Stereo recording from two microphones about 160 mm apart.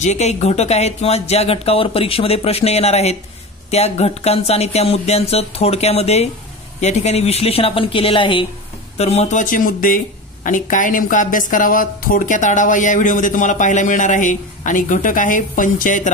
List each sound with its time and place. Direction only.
0.0 s speech: 45° left (ahead or behind)